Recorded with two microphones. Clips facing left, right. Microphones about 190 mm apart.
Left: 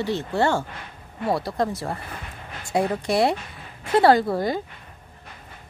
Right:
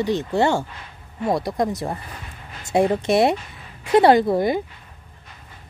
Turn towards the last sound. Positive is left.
turn(degrees=-20)  # may be behind; listen again after turning